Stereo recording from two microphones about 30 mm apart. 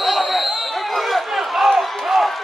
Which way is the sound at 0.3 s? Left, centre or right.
Centre.